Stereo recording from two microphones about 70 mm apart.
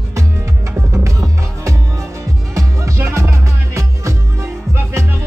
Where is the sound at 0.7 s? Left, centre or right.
Right.